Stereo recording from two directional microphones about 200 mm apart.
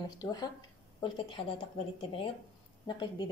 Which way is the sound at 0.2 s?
20° left (ahead or behind).